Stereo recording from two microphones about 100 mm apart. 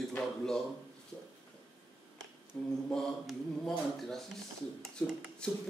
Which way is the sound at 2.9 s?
5° left (ahead or behind).